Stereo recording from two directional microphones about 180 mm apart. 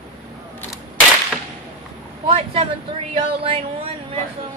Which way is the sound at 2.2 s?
35° right (ahead or behind).